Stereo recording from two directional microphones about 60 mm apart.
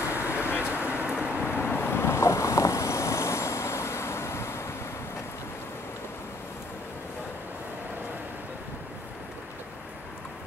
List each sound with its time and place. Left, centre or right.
0.0 s vehicle: left
0.7 s vehicle: right
1.5 s boat: left